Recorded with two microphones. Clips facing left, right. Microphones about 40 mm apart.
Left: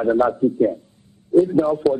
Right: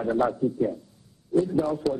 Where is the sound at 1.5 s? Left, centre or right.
Left.